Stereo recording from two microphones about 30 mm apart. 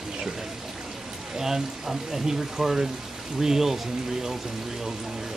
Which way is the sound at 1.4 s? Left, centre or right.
Centre.